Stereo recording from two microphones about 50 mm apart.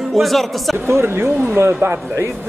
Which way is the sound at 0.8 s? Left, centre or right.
Right.